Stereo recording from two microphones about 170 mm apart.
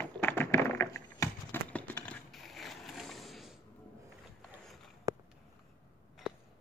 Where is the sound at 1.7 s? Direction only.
10° left (ahead or behind).